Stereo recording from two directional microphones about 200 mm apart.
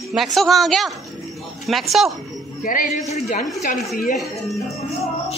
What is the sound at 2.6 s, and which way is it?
Speech, 45° left (ahead or behind).